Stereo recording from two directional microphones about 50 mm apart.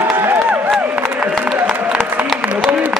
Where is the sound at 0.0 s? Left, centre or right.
Right.